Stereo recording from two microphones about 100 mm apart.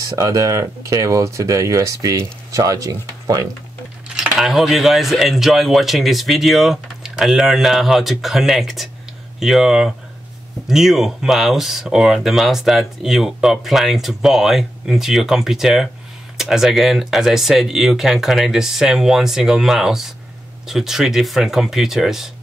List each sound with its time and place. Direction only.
0.0 s speech: 35° right (ahead or behind)
4.1 s speech: 5° right (ahead or behind)